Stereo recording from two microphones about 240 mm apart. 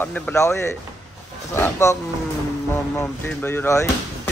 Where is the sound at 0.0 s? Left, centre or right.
Centre.